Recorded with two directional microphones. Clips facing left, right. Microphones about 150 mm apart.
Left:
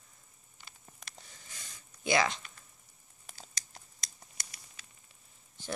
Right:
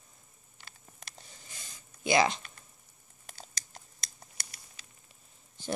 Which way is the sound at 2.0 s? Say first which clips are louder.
Right 3 dB; 25° right (ahead or behind).